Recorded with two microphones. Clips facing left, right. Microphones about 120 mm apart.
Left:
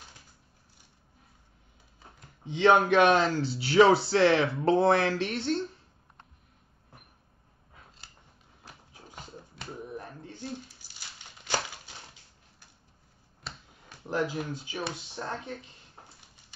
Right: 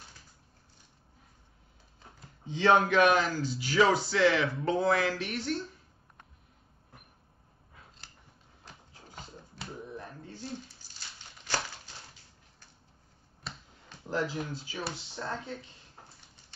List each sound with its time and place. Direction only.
2.4 s speech: 20° left (ahead or behind)
8.6 s music: 10° left (ahead or behind)
11.4 s a sound: 15° left (ahead or behind)
13.5 s finger snapping: centre (ahead or behind)
14.0 s speech: 20° left (ahead or behind)